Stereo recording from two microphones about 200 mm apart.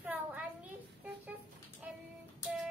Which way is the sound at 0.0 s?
5° right (ahead or behind).